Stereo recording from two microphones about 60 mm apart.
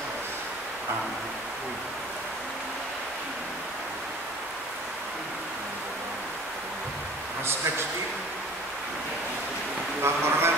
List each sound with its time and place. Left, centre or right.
10.0 s speech: right